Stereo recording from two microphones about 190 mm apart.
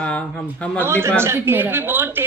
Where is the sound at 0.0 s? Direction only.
5° left (ahead or behind).